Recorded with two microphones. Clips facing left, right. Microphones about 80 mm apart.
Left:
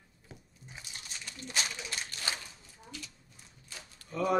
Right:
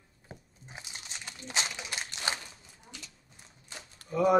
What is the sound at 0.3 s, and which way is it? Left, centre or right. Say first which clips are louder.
Crumpling: right 3 dB; right.